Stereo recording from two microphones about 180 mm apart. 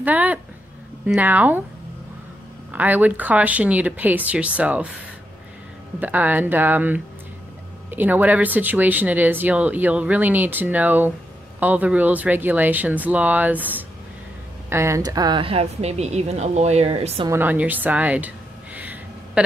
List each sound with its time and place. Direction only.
0.0 s speech: 10° right (ahead or behind)
2.7 s speech: 10° right (ahead or behind)
5.9 s a woman's voice: 10° right (ahead or behind); by 17.3 s 35° right (ahead or behind)
17.3 s speech: 10° right (ahead or behind)
18.8 s a sound: 10° right (ahead or behind)